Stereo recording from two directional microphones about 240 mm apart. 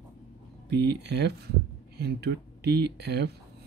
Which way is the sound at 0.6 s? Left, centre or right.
Right.